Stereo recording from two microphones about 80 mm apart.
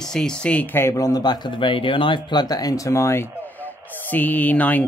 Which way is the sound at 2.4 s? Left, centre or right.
Left.